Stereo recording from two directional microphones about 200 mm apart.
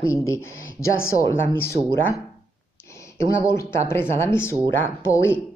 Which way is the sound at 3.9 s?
10° left (ahead or behind).